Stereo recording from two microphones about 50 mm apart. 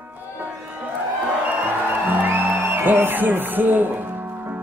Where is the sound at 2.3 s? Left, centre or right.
Right.